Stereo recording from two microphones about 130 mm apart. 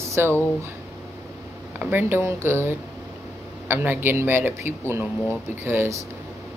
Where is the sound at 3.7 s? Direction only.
15° right (ahead or behind).